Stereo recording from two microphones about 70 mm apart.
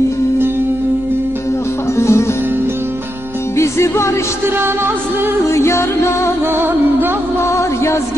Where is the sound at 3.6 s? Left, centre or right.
Left.